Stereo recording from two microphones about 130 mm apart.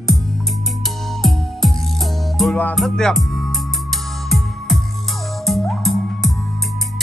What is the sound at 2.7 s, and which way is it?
Music, 5° left (ahead or behind).